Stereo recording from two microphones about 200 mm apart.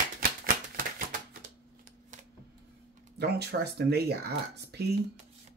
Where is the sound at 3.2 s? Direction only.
55° right (ahead or behind).